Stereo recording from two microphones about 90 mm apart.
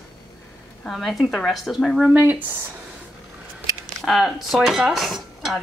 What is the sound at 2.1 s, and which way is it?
Speech, 20° right (ahead or behind).